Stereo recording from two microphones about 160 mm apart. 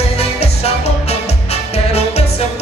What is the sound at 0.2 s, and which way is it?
Music, 40° left (ahead or behind).